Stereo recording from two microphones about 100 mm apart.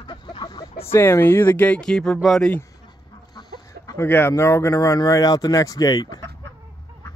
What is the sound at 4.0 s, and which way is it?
Speech, 20° left (ahead or behind).